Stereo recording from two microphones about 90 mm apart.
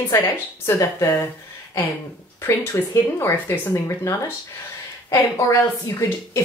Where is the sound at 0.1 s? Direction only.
30° left (ahead or behind).